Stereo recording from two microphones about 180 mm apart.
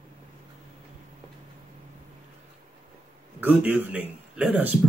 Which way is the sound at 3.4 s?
10° right (ahead or behind).